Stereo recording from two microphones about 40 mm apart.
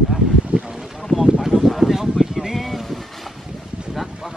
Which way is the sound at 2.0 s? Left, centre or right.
Centre.